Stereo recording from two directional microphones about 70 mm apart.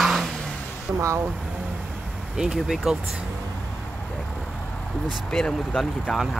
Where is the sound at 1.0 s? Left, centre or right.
Right.